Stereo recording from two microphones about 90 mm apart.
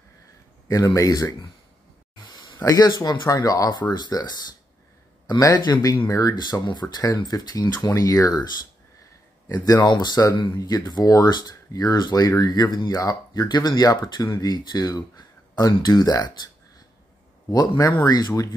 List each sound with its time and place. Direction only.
0.7 s speech: 40° left (ahead or behind)
2.3 s a sound: 50° left (ahead or behind)
2.6 s speech: 40° left (ahead or behind)